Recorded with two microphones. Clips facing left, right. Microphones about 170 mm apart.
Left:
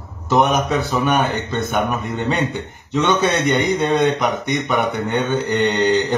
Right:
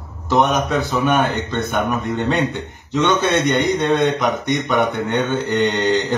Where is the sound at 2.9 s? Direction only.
Centre (ahead or behind).